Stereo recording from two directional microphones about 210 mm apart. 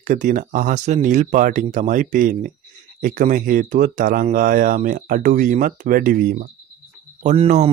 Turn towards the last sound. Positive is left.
turn(degrees=-35)  # may be behind; listen again after turning